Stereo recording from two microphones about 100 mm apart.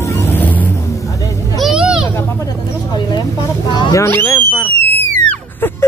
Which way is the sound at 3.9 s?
25° left (ahead or behind).